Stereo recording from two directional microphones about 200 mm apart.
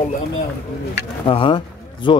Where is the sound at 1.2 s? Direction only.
25° left (ahead or behind).